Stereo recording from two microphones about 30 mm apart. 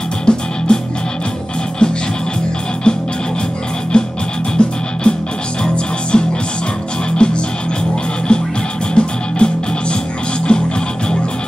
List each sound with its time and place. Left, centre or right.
0.2 s music: left
1.8 s music: left
3.9 s music: left